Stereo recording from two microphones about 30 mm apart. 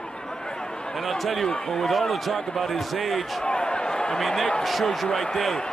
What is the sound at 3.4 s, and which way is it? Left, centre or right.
Basketball bounce, left.